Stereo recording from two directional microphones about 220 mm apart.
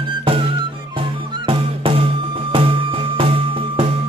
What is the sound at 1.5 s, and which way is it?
Music, 25° right (ahead or behind).